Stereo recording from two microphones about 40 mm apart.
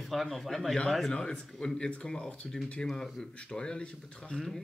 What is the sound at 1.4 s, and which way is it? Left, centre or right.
Speech, centre.